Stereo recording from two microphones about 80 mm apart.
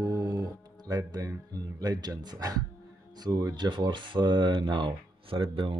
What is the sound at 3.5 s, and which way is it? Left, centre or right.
Speech, right.